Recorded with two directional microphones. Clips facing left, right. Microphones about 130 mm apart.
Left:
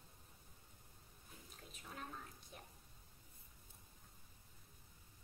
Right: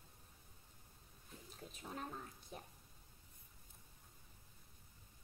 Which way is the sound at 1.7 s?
35° right (ahead or behind).